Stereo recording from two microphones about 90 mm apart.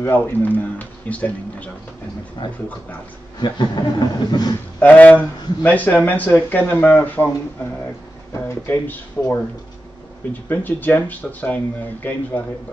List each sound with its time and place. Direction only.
0.0 s speech: 20° left (ahead or behind)
2.4 s speech: 65° left (ahead or behind)
3.3 s speech: 55° left (ahead or behind)
4.7 s speech: 15° left (ahead or behind)
9.2 s speech: 15° left (ahead or behind)
10.5 s speech: 20° left (ahead or behind)